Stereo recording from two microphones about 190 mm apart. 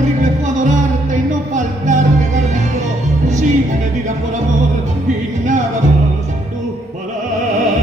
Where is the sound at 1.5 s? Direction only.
40° right (ahead or behind).